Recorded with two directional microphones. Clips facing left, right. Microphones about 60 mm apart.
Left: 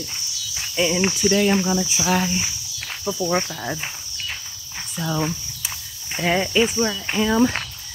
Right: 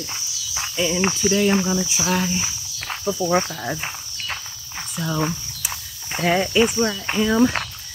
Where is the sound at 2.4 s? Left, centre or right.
Right.